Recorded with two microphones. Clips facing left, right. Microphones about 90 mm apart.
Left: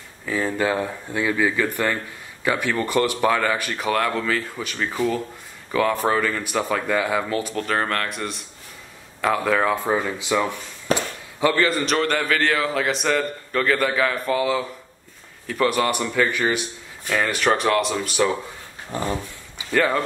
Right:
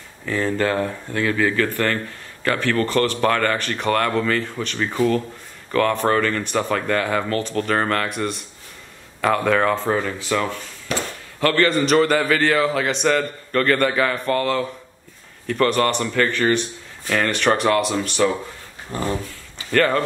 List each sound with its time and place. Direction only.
0.2 s speech: 5° left (ahead or behind)
18.9 s speech: 20° left (ahead or behind)
19.2 s a sound: 10° left (ahead or behind)